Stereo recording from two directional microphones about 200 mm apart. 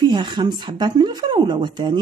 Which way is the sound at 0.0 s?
25° right (ahead or behind).